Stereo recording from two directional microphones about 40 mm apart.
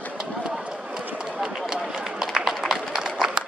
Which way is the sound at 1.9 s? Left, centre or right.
Centre.